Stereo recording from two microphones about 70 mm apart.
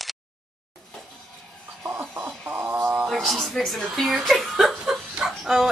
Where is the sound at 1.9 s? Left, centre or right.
Right.